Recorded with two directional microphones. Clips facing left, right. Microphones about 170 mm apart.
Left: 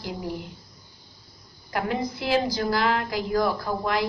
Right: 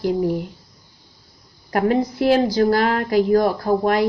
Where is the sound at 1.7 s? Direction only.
55° right (ahead or behind).